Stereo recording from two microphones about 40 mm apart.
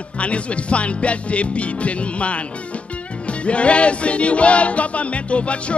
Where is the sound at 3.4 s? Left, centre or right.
Left.